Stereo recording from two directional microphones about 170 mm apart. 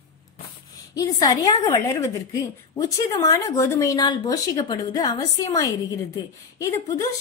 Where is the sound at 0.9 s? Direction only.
20° left (ahead or behind).